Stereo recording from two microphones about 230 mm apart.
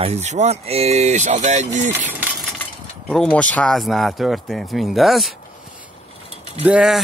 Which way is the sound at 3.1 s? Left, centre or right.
Centre.